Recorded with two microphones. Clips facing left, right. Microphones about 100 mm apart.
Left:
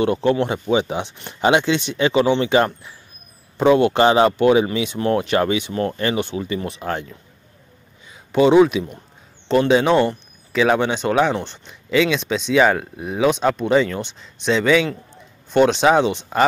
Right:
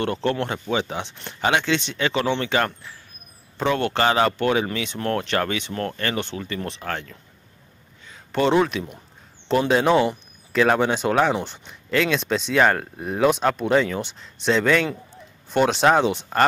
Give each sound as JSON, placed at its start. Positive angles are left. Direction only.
{"t": 0.0, "sound": "speech", "side_deg": 15}
{"t": 8.1, "sound": "speech", "side_deg": 5}